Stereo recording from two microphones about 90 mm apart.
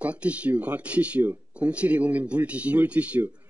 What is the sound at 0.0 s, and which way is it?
Speech, 15° right (ahead or behind).